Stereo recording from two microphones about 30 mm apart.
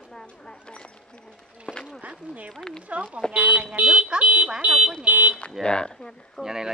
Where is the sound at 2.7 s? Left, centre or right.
Left.